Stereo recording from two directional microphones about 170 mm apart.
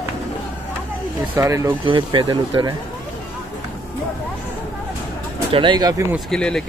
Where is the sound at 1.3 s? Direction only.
15° right (ahead or behind).